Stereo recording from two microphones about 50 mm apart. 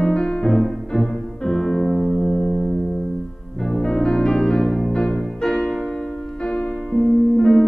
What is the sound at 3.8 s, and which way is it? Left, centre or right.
Music, centre.